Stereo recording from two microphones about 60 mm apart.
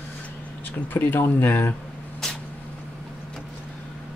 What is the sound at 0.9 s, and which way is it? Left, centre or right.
Speech, left.